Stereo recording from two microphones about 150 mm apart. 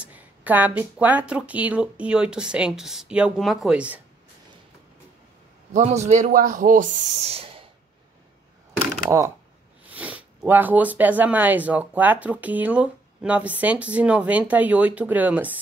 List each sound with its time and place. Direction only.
0.0 s speech: 10° right (ahead or behind)
5.7 s a man's voice: 50° right (ahead or behind)
7.2 s a sound: 45° right (ahead or behind)
9.8 s speech: 10° right (ahead or behind)